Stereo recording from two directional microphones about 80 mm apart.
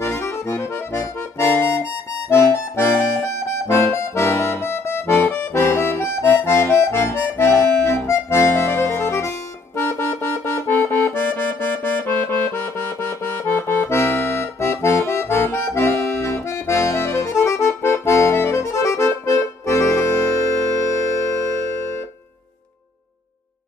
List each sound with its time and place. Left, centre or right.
0.0 s accordion: left